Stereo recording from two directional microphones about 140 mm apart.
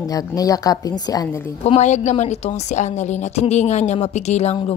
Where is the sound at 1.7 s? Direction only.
55° left (ahead or behind).